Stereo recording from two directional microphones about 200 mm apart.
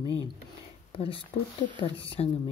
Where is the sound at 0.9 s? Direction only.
25° left (ahead or behind).